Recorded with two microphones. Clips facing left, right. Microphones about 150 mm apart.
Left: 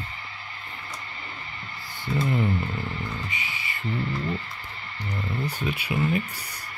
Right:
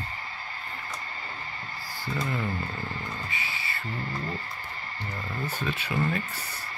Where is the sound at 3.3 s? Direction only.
15° left (ahead or behind).